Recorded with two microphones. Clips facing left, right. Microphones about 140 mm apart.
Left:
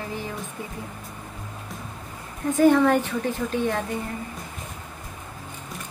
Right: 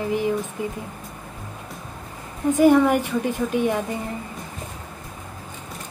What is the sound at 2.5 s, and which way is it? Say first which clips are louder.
A woman's voice: right 2 dB; 10° right (ahead or behind).